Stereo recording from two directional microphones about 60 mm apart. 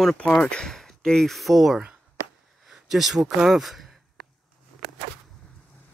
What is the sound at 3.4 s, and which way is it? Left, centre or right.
Speech, centre.